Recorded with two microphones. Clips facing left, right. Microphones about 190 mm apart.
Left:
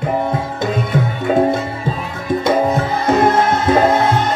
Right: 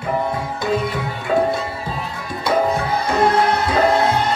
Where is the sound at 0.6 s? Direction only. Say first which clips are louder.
Left 2 dB; 20° left (ahead or behind).